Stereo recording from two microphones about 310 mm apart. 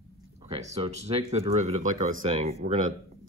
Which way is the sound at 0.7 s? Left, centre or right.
Centre.